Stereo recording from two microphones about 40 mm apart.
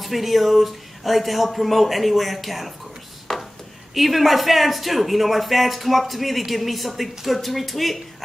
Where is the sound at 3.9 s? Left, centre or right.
Centre.